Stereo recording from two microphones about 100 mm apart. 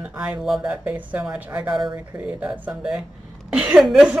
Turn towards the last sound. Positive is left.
turn(degrees=-5)  # may be behind; listen again after turning